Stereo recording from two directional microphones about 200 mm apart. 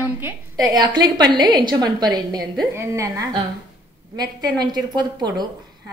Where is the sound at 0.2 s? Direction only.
20° right (ahead or behind).